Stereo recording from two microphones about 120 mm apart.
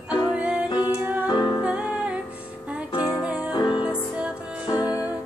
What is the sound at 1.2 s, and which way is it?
Music, 35° left (ahead or behind).